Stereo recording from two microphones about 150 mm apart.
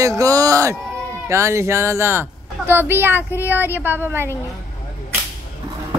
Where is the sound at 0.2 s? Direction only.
25° right (ahead or behind).